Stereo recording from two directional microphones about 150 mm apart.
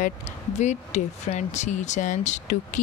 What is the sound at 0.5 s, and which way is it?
Speech, 50° left (ahead or behind).